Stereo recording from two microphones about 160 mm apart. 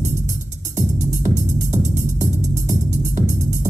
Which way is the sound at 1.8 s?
50° right (ahead or behind).